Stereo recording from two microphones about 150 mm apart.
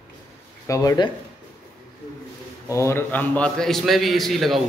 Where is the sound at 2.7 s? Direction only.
20° left (ahead or behind).